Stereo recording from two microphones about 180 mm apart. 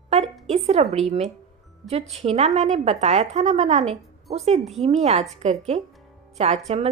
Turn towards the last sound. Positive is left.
turn(degrees=-35)  # may be behind; listen again after turning